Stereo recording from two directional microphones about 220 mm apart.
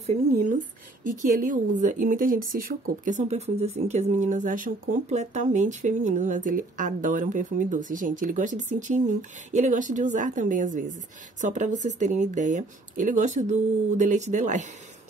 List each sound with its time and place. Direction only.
0.0 s a woman's voice: 30° right (ahead or behind)